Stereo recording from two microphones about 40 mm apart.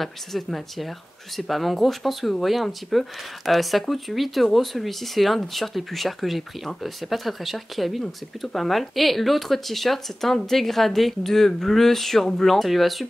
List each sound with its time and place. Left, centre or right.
0.0 s speech: centre